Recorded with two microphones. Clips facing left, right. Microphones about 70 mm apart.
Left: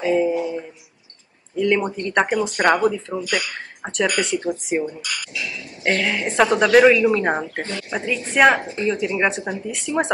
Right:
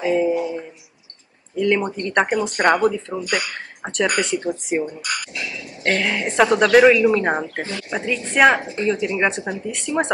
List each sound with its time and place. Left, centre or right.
0.0 s a sound: centre
1.6 s speech: centre
5.0 s speech: right
5.9 s speech: centre